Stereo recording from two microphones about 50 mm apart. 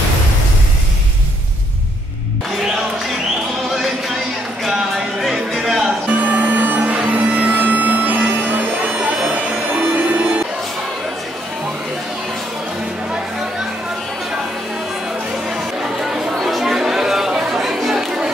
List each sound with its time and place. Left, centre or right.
4.6 s a sound: centre
5.2 s music: centre
5.9 s music: right
7.2 s music: right
7.5 s a sound: right
9.3 s music: right
15.5 s chatter: centre